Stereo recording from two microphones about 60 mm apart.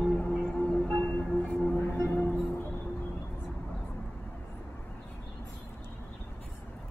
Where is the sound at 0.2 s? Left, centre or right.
Centre.